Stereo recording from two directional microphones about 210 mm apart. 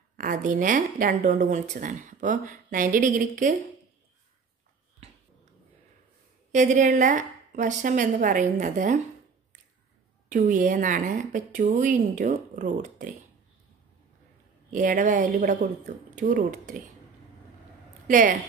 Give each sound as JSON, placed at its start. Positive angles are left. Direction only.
{"t": 0.2, "sound": "a woman's voice", "side_deg": -35}
{"t": 6.5, "sound": "a woman's voice", "side_deg": -35}
{"t": 10.3, "sound": "a woman's voice", "side_deg": -40}
{"t": 14.7, "sound": "a woman's voice", "side_deg": -40}
{"t": 18.0, "sound": "a woman's voice", "side_deg": -40}